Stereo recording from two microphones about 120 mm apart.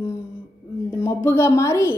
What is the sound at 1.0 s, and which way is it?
Speech, 20° left (ahead or behind).